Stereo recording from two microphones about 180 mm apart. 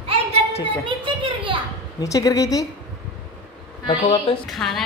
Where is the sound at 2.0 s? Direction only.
20° left (ahead or behind).